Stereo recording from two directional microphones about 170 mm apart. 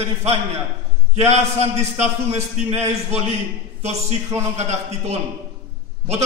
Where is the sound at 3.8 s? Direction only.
40° right (ahead or behind).